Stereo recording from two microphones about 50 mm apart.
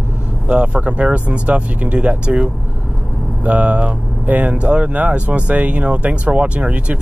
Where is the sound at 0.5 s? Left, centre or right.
Right.